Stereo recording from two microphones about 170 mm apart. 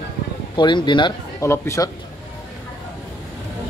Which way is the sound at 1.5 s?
15° left (ahead or behind).